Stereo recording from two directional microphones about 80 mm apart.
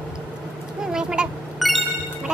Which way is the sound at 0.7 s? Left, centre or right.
Centre.